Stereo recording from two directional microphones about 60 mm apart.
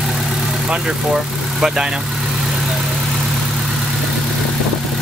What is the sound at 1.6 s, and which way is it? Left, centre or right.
Speech, centre.